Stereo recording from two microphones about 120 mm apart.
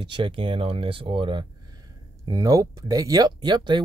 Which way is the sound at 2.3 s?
30° right (ahead or behind).